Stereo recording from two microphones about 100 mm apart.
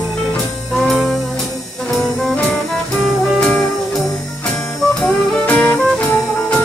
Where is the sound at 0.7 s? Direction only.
5° left (ahead or behind).